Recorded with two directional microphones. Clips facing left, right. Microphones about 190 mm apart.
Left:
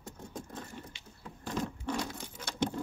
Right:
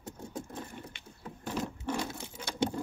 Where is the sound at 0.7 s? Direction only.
55° right (ahead or behind).